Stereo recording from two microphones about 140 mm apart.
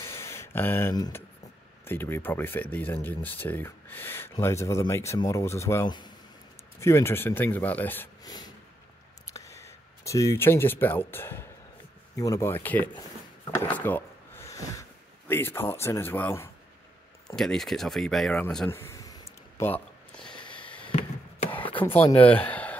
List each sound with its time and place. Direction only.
0.0 s a sound: 20° left (ahead or behind)
1.9 s speech: 15° left (ahead or behind)
5.9 s speech: 30° left (ahead or behind)
6.8 s speech: 20° left (ahead or behind)
8.2 s a sound: 30° left (ahead or behind)
9.3 s speech: 20° left (ahead or behind)
17.4 s speech: 5° left (ahead or behind)
18.7 s a sound: 20° left (ahead or behind)
20.2 s snort: 35° left (ahead or behind)
22.1 s speech: 10° left (ahead or behind)